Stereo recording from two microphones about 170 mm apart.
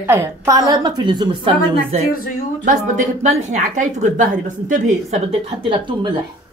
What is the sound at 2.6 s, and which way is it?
Speech, 45° right (ahead or behind).